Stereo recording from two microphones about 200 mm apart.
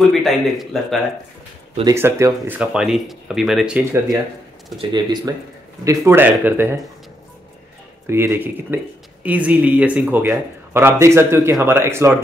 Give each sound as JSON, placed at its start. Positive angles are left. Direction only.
{"t": 0.1, "sound": "speech", "side_deg": 0}
{"t": 1.9, "sound": "speech", "side_deg": -15}
{"t": 4.7, "sound": "speech", "side_deg": -20}
{"t": 8.1, "sound": "speech", "side_deg": -10}